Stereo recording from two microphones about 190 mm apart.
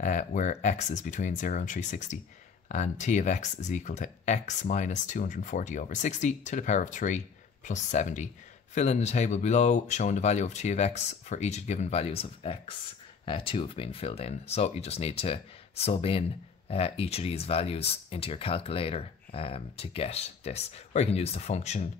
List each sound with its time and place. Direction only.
0.0 s speech: 40° left (ahead or behind)